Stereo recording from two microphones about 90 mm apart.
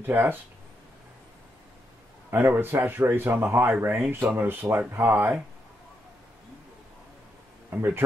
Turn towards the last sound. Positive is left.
turn(degrees=-20)  # may be behind; listen again after turning